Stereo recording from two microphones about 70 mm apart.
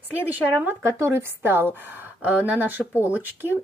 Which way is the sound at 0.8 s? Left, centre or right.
Right.